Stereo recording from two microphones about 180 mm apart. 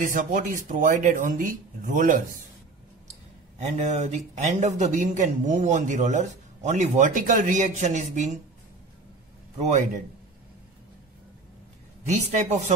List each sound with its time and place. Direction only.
0.0 s speech: 45° right (ahead or behind)
3.5 s speech: 40° right (ahead or behind)
9.6 s speech: 40° right (ahead or behind)
12.1 s speech: 40° right (ahead or behind)